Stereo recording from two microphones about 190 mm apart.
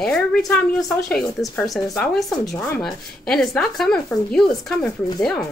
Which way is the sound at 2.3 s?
20° left (ahead or behind).